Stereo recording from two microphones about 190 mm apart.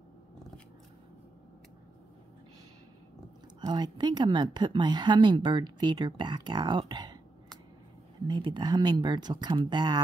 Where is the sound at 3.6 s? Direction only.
20° right (ahead or behind).